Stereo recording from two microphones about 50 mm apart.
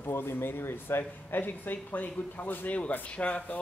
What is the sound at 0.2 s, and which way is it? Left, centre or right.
Speech, left.